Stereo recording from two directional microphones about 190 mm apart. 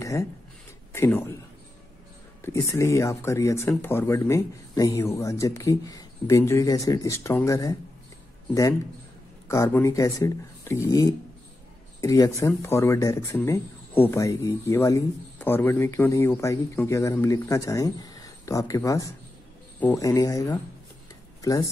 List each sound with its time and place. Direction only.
0.0 s speech: 15° left (ahead or behind)
2.4 s speech: 15° left (ahead or behind)
9.5 s speech: 15° left (ahead or behind)